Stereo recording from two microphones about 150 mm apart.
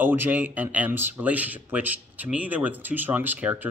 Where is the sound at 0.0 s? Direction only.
15° right (ahead or behind).